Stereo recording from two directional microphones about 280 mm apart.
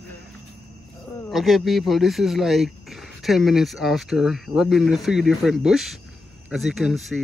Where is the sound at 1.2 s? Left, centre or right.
Centre.